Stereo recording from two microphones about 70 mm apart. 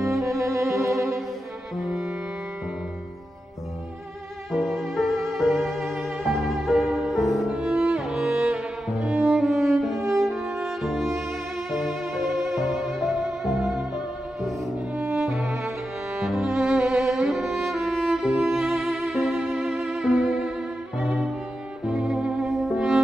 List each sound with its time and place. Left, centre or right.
0.2 s music: right
0.9 s music: centre
4.5 s music: centre
7.4 s music: centre
21.0 s violin: centre
21.8 s music: centre